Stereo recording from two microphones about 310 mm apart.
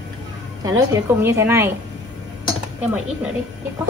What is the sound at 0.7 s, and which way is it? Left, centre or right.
Speech, centre.